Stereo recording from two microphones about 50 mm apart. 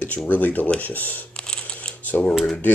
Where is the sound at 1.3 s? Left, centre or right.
Centre.